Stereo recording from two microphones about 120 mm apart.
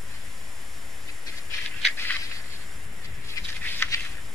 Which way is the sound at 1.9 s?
15° left (ahead or behind).